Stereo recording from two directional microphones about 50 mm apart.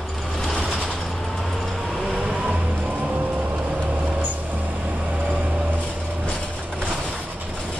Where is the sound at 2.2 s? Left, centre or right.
Right.